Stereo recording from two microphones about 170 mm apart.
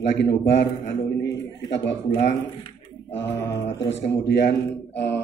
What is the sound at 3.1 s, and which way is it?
Mantra, 90° left.